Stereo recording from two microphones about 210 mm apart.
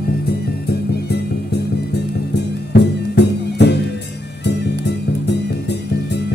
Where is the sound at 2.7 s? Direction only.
55° left (ahead or behind).